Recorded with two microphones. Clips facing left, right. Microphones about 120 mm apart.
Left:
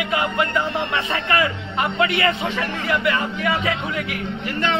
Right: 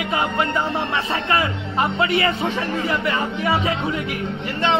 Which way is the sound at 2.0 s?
30° right (ahead or behind).